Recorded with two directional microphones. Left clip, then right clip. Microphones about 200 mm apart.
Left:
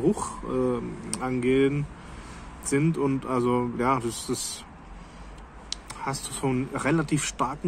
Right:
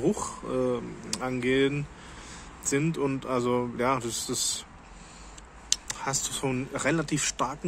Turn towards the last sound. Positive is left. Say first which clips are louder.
# left 1 dB
turn(degrees=-15)  # may be behind; listen again after turning